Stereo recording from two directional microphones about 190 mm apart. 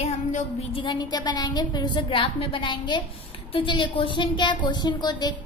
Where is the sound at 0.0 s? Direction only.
30° left (ahead or behind).